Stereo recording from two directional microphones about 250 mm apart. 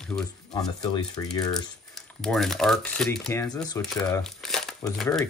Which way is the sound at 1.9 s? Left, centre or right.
Centre.